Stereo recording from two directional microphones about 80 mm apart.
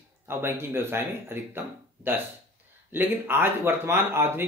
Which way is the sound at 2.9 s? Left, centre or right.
Right.